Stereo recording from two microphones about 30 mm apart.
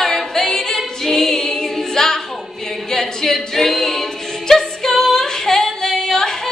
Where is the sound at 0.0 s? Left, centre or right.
Centre.